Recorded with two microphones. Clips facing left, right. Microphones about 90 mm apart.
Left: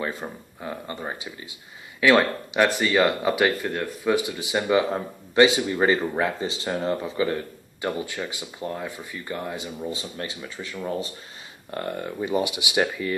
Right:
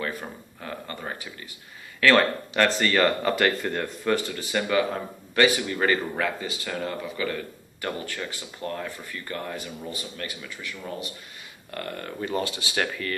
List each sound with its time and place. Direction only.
0.0 s speech: 20° left (ahead or behind)